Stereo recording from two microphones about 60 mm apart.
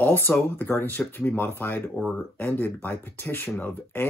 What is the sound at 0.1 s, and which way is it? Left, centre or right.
Speech, left.